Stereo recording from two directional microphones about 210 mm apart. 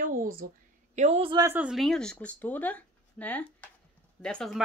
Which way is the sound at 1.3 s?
10° right (ahead or behind).